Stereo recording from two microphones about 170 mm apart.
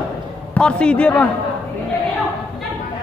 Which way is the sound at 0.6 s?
5° left (ahead or behind).